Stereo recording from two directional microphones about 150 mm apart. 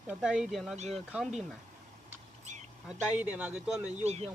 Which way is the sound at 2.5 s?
50° right (ahead or behind).